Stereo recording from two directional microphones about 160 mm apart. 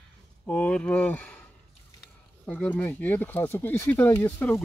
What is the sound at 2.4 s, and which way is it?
Speech, 10° left (ahead or behind).